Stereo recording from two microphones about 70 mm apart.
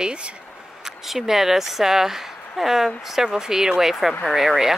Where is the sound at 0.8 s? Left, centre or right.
Centre.